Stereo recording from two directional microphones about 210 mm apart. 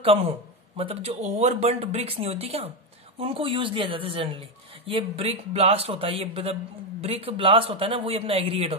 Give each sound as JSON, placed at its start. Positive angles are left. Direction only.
{"t": 0.0, "sound": "a man's voice", "side_deg": -25}